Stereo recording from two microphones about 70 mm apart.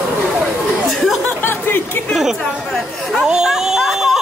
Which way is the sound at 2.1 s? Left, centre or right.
Centre.